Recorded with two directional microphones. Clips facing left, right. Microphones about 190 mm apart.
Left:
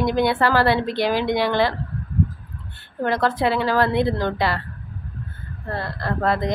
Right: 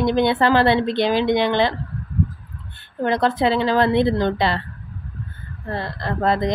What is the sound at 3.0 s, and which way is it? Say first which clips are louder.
Speech: right 2 dB; 20° right (ahead or behind).